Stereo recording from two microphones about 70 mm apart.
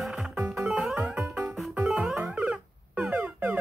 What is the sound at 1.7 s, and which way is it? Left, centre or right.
Music, centre.